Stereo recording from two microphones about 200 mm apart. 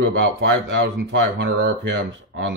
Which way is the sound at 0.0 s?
65° right (ahead or behind).